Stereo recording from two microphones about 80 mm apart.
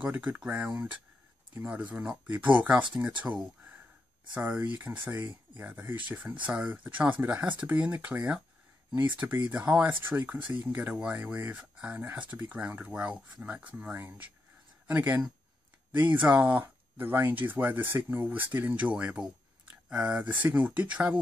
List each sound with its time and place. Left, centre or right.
0.0 s speech: centre
4.3 s speech: right